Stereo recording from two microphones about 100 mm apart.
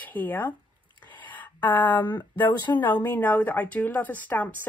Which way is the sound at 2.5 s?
45° left (ahead or behind).